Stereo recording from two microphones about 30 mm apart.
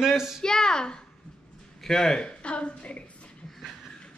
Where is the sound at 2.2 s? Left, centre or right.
Left.